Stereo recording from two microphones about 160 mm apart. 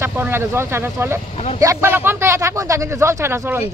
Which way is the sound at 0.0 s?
15° right (ahead or behind).